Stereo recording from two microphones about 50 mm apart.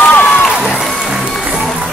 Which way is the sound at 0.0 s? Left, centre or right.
Left.